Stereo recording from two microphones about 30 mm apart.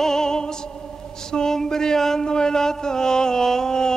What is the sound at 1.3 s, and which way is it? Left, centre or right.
Speech, centre.